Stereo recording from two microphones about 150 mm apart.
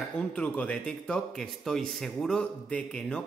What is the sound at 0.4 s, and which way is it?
Speech, 5° left (ahead or behind).